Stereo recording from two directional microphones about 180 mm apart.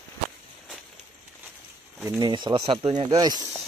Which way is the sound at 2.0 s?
20° right (ahead or behind).